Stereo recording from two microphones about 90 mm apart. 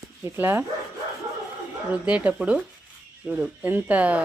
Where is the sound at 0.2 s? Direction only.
25° right (ahead or behind).